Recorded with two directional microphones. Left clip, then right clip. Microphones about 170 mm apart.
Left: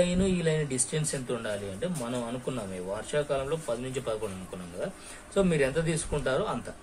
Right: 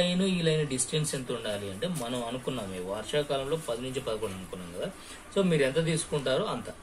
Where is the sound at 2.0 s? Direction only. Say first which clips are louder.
Even; 30° left (ahead or behind).